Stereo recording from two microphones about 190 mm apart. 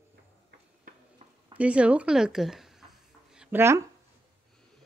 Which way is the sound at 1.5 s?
5° right (ahead or behind).